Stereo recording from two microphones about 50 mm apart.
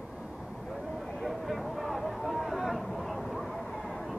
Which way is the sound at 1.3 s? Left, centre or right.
Centre.